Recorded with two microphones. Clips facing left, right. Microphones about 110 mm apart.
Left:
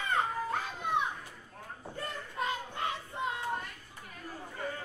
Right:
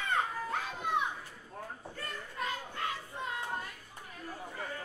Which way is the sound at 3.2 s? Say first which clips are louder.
Left 5 dB; 20° left (ahead or behind).